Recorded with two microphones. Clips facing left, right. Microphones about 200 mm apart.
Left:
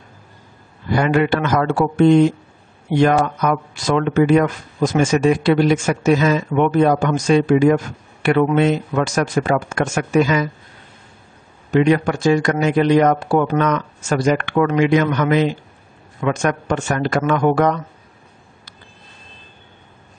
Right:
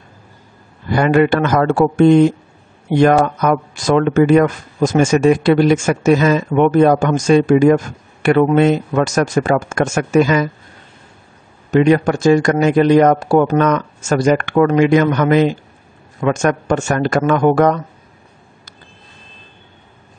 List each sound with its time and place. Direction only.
0.9 s speech: 50° right (ahead or behind)
11.7 s speech: 45° right (ahead or behind)